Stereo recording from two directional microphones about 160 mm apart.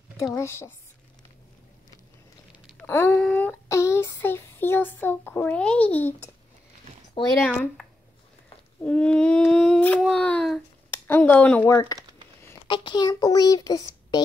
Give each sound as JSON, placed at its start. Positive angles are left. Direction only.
{"t": 0.2, "sound": "humming", "side_deg": 20}
{"t": 2.8, "sound": "speech", "side_deg": 15}
{"t": 7.3, "sound": "humming", "side_deg": 10}
{"t": 8.8, "sound": "humming", "side_deg": 5}
{"t": 10.9, "sound": "speech", "side_deg": 10}
{"t": 12.6, "sound": "a child's voice", "side_deg": 30}